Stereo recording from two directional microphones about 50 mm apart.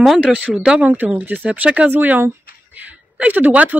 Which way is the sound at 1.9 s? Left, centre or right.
Right.